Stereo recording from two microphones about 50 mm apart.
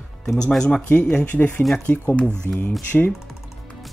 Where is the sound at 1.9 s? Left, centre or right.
Left.